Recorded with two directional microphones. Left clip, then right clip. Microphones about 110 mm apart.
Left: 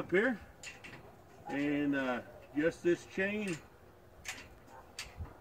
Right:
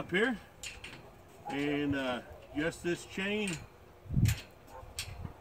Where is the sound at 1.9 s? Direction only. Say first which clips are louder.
Even; 35° right (ahead or behind).